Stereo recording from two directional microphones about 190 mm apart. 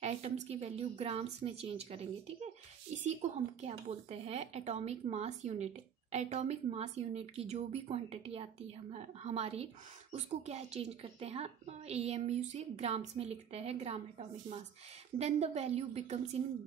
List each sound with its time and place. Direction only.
0.0 s a woman's voice: 35° right (ahead or behind)